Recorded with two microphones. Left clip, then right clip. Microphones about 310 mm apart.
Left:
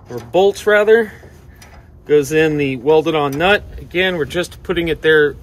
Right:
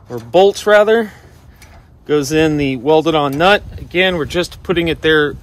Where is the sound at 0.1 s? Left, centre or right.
Right.